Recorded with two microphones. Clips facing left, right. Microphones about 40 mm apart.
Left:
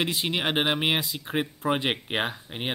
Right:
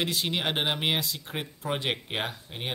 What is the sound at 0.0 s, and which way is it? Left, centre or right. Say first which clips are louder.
Speech: left 2 dB; centre.